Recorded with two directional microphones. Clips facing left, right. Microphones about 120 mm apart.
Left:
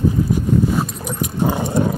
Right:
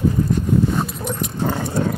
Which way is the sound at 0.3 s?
5° left (ahead or behind).